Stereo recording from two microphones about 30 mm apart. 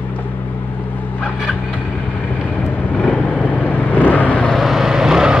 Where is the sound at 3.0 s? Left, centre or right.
Left.